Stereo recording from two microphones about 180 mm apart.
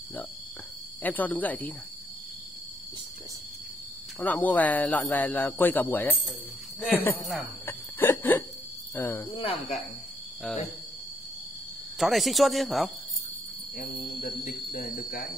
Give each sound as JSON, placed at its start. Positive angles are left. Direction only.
{"t": 1.0, "sound": "speech", "side_deg": 10}
{"t": 4.2, "sound": "speech", "side_deg": 10}
{"t": 7.2, "sound": "a sound", "side_deg": 10}
{"t": 8.9, "sound": "speech", "side_deg": 10}
{"t": 9.3, "sound": "speech", "side_deg": 30}
{"t": 12.0, "sound": "speech", "side_deg": 0}
{"t": 13.7, "sound": "speech", "side_deg": 50}